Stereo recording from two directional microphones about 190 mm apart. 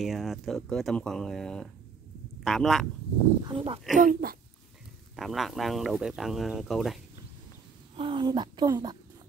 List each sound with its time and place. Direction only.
0.0 s speech: centre (ahead or behind)
3.4 s speech: 30° right (ahead or behind)
4.0 s speech: 50° right (ahead or behind)
5.1 s speech: centre (ahead or behind)
7.9 s speech: 25° right (ahead or behind)